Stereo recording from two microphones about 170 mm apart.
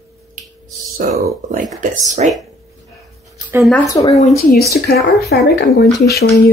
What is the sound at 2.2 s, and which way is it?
Speech, 45° right (ahead or behind).